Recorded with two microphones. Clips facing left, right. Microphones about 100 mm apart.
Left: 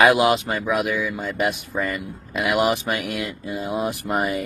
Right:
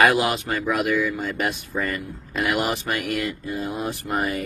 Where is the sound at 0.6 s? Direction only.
5° left (ahead or behind).